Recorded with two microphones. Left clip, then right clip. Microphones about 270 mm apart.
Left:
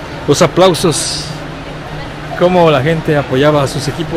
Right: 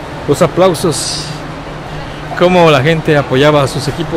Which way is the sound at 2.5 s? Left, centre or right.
Right.